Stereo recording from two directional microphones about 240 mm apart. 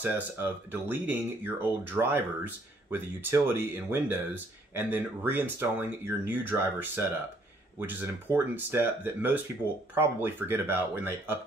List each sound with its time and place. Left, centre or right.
0.0 s speech: centre